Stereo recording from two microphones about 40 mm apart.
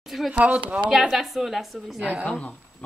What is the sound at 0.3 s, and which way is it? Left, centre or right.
Speech, right.